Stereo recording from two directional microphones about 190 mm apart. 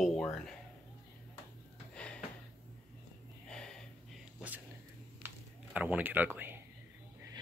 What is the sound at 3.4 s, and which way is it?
Snort, 5° left (ahead or behind).